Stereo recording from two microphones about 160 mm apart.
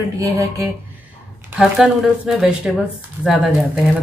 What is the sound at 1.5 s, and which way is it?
Speech, centre (ahead or behind).